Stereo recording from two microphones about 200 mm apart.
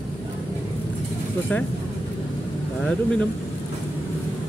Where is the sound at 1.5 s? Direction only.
10° left (ahead or behind).